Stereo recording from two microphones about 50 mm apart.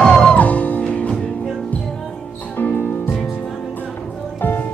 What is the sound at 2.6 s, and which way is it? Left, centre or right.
Music, left.